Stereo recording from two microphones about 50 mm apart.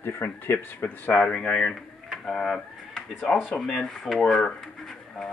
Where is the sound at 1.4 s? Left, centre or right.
Centre.